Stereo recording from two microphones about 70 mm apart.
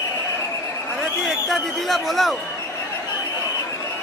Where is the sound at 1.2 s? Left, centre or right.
Centre.